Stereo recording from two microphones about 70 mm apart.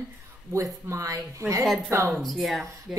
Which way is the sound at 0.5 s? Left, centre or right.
Right.